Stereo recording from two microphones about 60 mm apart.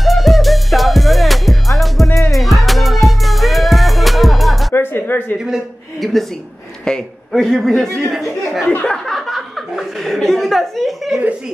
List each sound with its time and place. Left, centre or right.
0.0 s music: centre
4.7 s music: left
6.8 s a man's voice: centre
8.1 s chuckle: centre